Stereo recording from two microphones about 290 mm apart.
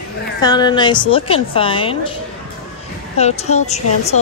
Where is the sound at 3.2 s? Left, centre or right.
Left.